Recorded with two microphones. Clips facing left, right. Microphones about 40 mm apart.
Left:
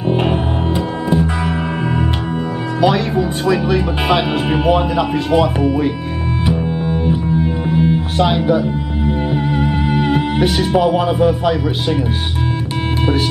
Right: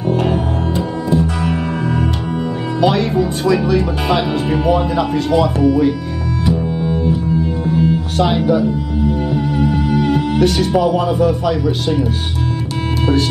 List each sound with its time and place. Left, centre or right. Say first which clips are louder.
0.1 s music: even; left
2.8 s speech: even; centre; by 5.9 s left
6.4 s music: right 1 dB; left
8.2 s speech: even; centre
8.6 s music: right 2 dB; left
10.6 s speech: even; centre